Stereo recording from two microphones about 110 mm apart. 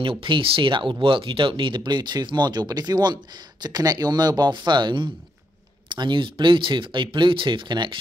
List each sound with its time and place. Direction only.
0.0 s speech: 50° right (ahead or behind)